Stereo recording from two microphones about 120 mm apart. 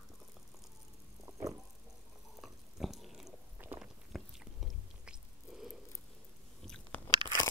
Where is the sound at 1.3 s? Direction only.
25° right (ahead or behind).